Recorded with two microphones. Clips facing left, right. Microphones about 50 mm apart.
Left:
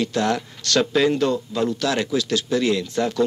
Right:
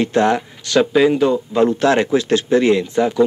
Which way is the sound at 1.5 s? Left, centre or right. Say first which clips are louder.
Right 8 dB; right.